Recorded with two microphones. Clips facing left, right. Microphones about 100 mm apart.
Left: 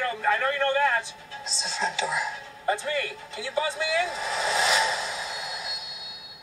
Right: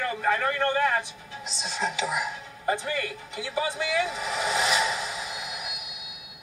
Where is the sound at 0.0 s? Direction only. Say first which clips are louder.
Even; 20° right (ahead or behind).